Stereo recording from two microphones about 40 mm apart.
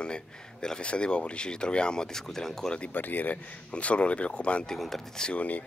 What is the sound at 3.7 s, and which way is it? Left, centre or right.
Speech, left.